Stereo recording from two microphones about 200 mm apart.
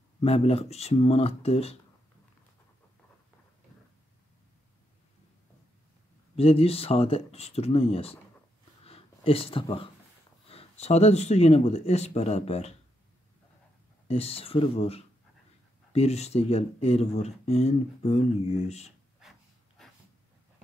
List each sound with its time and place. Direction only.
0.2 s speech: 30° left (ahead or behind)
6.3 s speech: 30° left (ahead or behind)
8.8 s a sound: 30° left (ahead or behind)
10.5 s speech: 30° left (ahead or behind)
14.0 s speech: 30° left (ahead or behind)